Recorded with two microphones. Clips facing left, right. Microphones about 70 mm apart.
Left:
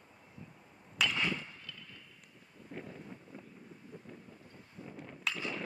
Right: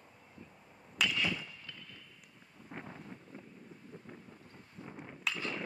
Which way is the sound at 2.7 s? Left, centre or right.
Right.